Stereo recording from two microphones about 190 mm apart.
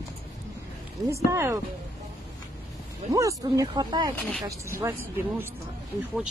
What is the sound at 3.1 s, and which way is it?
Speech, 15° right (ahead or behind).